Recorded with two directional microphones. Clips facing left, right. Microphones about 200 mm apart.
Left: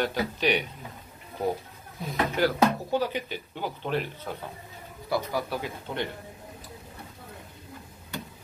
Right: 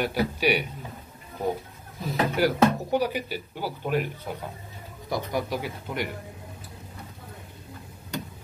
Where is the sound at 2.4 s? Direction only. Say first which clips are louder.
Right 2 dB; 15° right (ahead or behind).